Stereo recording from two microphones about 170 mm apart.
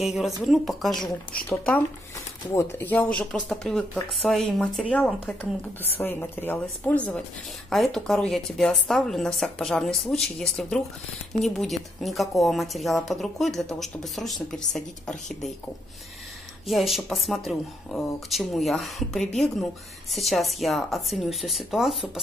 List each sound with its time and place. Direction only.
0.0 s speech: centre (ahead or behind)
2.5 s speech: 10° left (ahead or behind)
16.6 s speech: centre (ahead or behind)